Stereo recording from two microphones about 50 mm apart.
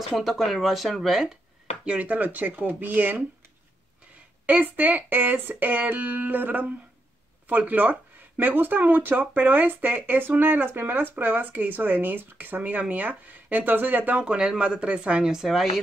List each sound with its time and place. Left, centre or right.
0.1 s speech: centre
1.9 s speech: right
4.5 s speech: right
14.2 s speech: centre
15.4 s speech: centre